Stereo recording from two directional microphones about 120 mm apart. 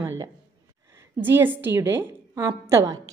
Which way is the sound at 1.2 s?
15° right (ahead or behind).